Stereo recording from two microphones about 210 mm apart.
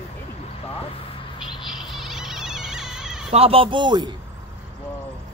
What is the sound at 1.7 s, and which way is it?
Insect, centre (ahead or behind).